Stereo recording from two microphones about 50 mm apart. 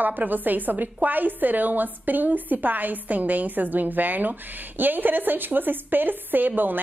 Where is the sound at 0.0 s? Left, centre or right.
Right.